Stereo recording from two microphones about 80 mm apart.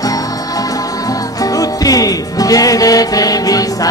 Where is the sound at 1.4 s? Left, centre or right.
Left.